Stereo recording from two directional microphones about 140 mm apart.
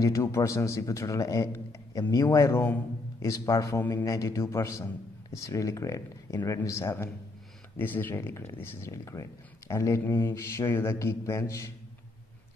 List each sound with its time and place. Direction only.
0.0 s speech: 20° left (ahead or behind)